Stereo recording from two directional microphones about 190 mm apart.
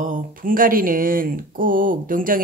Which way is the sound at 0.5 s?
50° right (ahead or behind).